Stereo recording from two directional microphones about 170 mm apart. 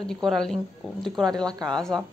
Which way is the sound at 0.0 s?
Centre (ahead or behind).